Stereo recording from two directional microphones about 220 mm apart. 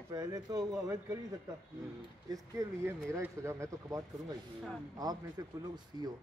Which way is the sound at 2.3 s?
15° right (ahead or behind).